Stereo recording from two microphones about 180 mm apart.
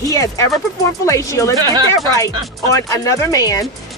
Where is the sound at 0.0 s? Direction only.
20° left (ahead or behind).